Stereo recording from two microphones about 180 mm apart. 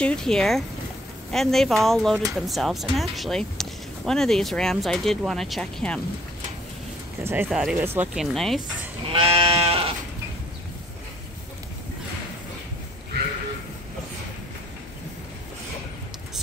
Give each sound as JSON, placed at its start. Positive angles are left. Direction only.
{"t": 0.0, "sound": "speech", "side_deg": 5}
{"t": 7.2, "sound": "speech", "side_deg": -10}
{"t": 9.3, "sound": "sheep", "side_deg": -30}